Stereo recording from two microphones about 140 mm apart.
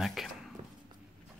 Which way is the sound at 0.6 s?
50° right (ahead or behind).